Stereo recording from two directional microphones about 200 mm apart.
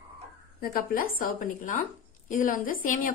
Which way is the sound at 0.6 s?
45° left (ahead or behind).